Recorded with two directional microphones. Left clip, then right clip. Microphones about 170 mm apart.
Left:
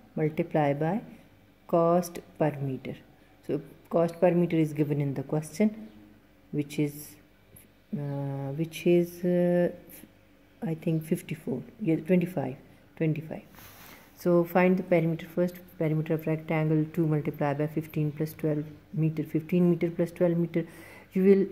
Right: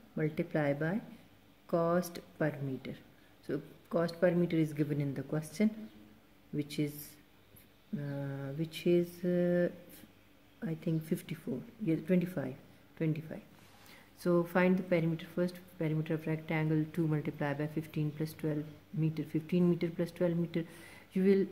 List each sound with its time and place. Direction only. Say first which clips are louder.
0.2 s a woman's voice: left 7 dB; 20° left (ahead or behind)
8.0 s a woman's voice: left 6 dB; 20° left (ahead or behind)